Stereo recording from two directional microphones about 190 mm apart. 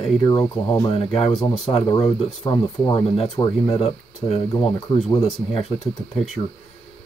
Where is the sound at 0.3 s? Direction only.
20° left (ahead or behind).